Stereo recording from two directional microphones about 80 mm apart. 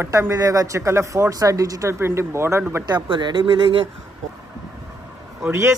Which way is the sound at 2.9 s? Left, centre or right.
Right.